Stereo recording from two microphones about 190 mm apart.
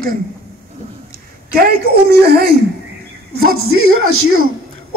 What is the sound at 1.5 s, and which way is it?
Speech, 50° right (ahead or behind).